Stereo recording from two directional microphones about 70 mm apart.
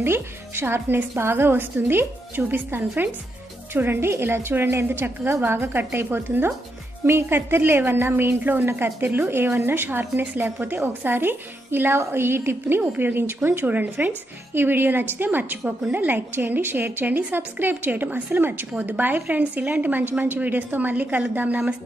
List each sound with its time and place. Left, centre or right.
0.0 s a woman's voice: right